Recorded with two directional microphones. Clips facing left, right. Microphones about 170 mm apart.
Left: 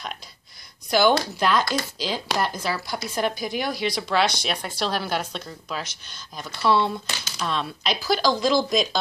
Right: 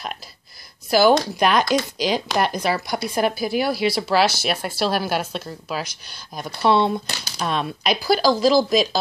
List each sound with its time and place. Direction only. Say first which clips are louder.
0.8 s speech: right 4 dB; 5° right (ahead or behind)
1.4 s a woman's voice: right 4 dB; 15° right (ahead or behind)
7.1 s speech: right 2 dB; 35° right (ahead or behind)
7.4 s a woman's voice: right 4 dB; 10° right (ahead or behind)